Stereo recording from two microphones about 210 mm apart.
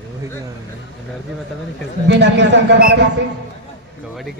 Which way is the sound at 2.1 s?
55° right (ahead or behind).